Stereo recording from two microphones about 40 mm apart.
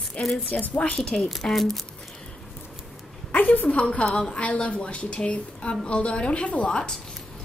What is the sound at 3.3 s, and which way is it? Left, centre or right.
Speech, left.